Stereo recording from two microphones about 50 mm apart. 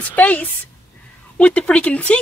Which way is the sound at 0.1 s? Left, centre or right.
Left.